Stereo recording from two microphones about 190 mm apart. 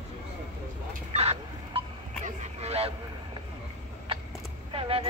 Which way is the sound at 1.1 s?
35° right (ahead or behind).